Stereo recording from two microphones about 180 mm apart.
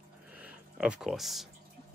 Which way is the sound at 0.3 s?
5° right (ahead or behind).